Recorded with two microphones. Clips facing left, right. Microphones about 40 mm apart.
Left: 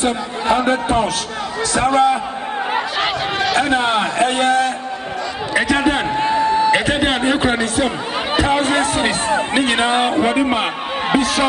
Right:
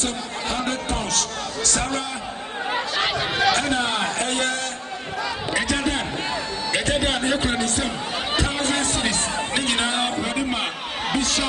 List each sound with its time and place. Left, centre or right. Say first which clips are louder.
0.0 s speech: left 8 dB; left
2.7 s chatter: left 3 dB; centre
5.5 s a sound: left 8 dB; centre
7.8 s speech: left 6 dB; centre
11.1 s speech: left 7 dB; centre